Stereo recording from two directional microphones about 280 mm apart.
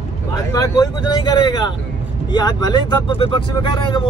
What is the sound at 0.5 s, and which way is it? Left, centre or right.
Speech, centre.